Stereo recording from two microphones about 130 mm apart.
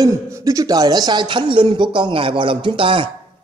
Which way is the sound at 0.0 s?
25° right (ahead or behind).